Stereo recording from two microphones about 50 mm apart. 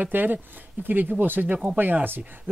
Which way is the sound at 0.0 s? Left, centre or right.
Right.